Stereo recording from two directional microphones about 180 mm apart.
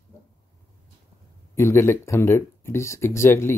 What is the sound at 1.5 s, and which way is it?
Speech, 15° left (ahead or behind).